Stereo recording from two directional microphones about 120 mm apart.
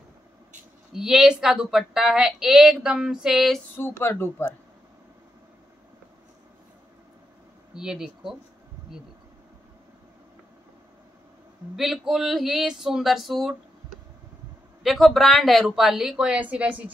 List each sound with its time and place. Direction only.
0.9 s a woman's voice: 5° right (ahead or behind)
3.7 s speech: 20° left (ahead or behind)
7.7 s a woman's voice: 5° right (ahead or behind)
11.7 s a woman's voice: centre (ahead or behind)
14.8 s a woman's voice: centre (ahead or behind)